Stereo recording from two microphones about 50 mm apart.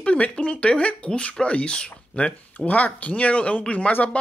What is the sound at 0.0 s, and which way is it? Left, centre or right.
Speech, left.